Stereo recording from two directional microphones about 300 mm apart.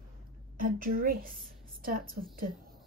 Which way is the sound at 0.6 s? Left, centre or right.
Right.